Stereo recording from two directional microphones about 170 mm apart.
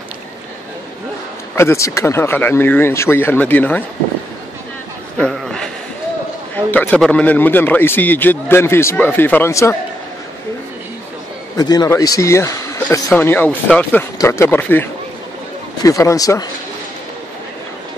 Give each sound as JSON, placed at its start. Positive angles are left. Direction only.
{"t": 1.5, "sound": "a man's voice", "side_deg": 15}
{"t": 5.1, "sound": "chuckle", "side_deg": 5}
{"t": 6.5, "sound": "a man's voice", "side_deg": 10}
{"t": 11.5, "sound": "a man's voice", "side_deg": 20}